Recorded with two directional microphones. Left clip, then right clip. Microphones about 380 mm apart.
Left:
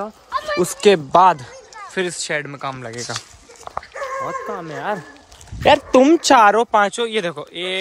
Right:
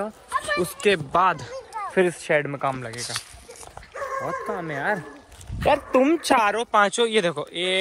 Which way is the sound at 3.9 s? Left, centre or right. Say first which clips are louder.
Left 2 dB; left.